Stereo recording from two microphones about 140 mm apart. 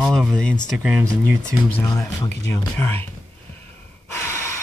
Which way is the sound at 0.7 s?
15° right (ahead or behind).